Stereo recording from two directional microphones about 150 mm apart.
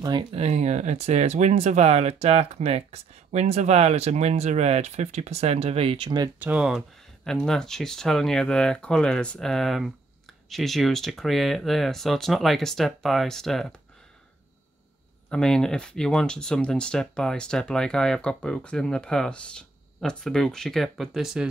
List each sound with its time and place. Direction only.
0.3 s speech: 45° right (ahead or behind); by 6.3 s 30° right (ahead or behind)
6.4 s speech: 5° right (ahead or behind)
15.2 s speech: 5° left (ahead or behind)